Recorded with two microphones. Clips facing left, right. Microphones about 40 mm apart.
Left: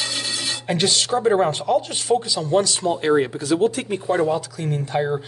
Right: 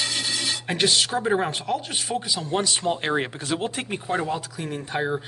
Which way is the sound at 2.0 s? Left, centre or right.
Centre.